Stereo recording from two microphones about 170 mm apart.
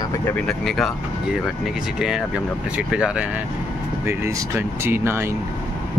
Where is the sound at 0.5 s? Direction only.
Centre (ahead or behind).